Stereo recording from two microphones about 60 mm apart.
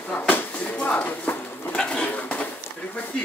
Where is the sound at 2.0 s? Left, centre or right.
Left.